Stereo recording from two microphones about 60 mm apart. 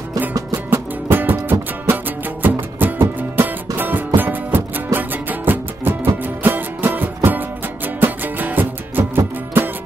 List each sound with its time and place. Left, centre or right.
0.7 s music: right